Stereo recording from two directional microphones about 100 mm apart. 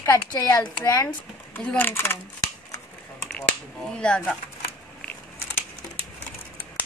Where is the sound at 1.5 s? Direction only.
20° left (ahead or behind).